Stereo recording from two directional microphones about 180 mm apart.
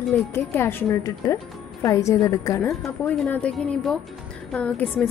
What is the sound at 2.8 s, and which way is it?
A woman's voice, 5° left (ahead or behind).